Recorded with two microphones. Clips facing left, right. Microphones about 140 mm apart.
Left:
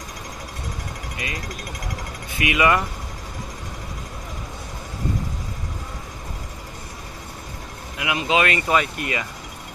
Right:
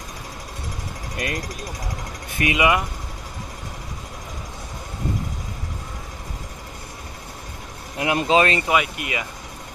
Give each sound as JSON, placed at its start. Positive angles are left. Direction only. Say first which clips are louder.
{"t": 1.1, "sound": "speech", "louder": "right 6 dB", "side_deg": -50}
{"t": 2.5, "sound": "speech", "louder": "left 1 dB", "side_deg": -15}
{"t": 8.0, "sound": "speech", "louder": "right 3 dB", "side_deg": -40}
{"t": 8.6, "sound": "speech", "louder": "even", "side_deg": -10}